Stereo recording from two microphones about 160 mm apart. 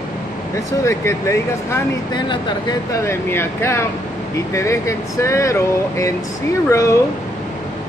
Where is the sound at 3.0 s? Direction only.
15° left (ahead or behind).